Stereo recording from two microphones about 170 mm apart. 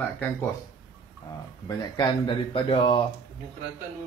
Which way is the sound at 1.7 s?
25° left (ahead or behind).